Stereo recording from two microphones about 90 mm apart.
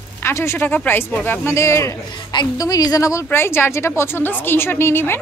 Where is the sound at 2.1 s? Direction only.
60° left (ahead or behind).